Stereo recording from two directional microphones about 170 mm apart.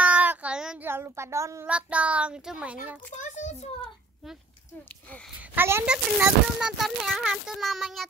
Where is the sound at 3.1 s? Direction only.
45° left (ahead or behind).